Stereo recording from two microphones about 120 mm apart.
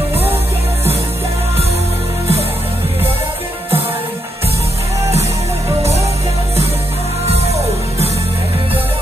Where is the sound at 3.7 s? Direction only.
50° right (ahead or behind).